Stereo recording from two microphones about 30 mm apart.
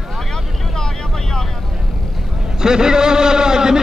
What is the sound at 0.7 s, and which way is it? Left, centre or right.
Vehicle, centre.